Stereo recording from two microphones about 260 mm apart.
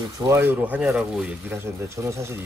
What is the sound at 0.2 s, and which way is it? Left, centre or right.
Speech, centre.